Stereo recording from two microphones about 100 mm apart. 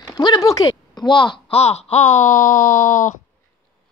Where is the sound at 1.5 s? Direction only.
90° left.